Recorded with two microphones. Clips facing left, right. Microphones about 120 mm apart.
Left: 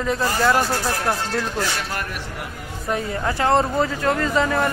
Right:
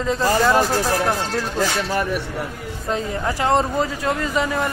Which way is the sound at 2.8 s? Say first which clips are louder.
Even; 20° right (ahead or behind).